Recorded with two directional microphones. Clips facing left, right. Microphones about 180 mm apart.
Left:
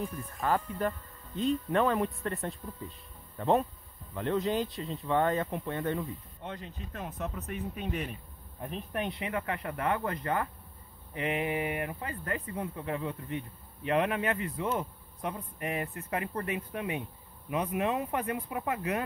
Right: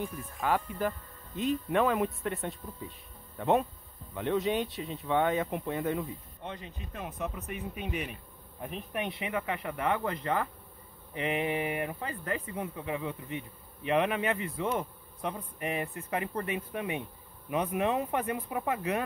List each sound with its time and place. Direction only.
0.0 s speech: centre (ahead or behind); by 19.0 s 25° right (ahead or behind)